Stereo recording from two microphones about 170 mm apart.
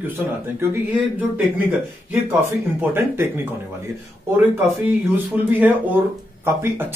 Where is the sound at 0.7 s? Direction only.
10° right (ahead or behind).